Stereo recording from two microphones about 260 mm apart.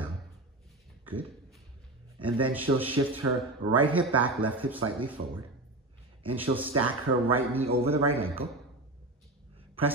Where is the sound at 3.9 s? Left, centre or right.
Centre.